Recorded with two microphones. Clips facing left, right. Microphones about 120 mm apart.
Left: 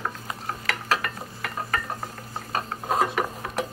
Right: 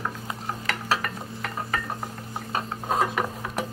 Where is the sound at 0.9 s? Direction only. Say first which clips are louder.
Left 1 dB; 10° right (ahead or behind).